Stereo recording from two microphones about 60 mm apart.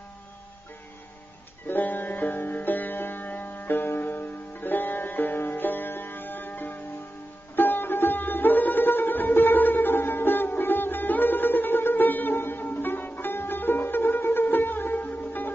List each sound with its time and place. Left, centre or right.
1.7 s music: left